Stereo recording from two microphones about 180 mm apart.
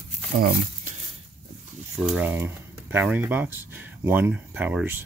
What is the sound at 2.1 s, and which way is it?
Speech, 10° right (ahead or behind).